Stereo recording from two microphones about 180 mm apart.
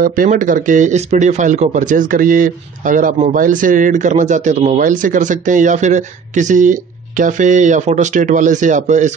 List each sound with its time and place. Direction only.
0.0 s speech: 50° right (ahead or behind)